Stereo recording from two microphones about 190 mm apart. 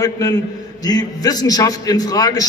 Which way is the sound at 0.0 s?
20° left (ahead or behind).